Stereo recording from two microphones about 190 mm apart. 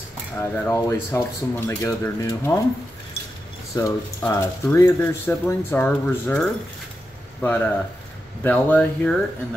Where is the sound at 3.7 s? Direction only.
20° left (ahead or behind).